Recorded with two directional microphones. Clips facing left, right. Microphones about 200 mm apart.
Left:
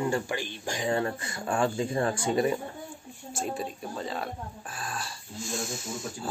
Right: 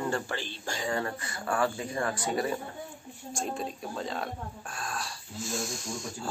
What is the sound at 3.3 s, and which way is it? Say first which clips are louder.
Speech: left 1 dB; 5° left (ahead or behind).